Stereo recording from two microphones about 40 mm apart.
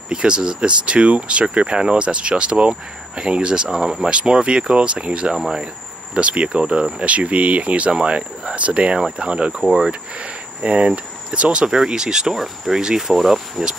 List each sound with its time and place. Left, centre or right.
0.1 s speech: right
4.1 s speech: right
5.3 s speech: centre
6.1 s speech: right
10.6 s speech: right; by 13.7 s centre